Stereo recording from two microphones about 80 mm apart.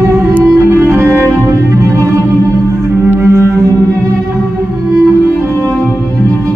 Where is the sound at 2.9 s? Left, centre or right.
Right.